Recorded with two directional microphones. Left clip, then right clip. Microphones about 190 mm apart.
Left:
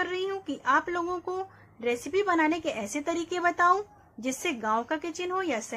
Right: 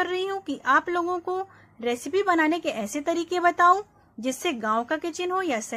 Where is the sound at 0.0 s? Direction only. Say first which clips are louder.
Right 4 dB; 20° right (ahead or behind).